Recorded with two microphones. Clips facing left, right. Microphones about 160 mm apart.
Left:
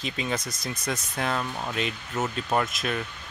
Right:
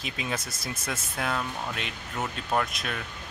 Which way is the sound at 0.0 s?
5° right (ahead or behind).